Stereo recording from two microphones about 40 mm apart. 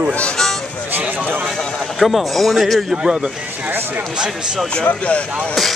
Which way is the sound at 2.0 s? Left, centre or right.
Centre.